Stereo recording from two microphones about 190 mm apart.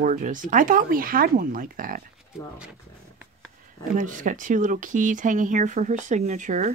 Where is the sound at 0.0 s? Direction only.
45° right (ahead or behind).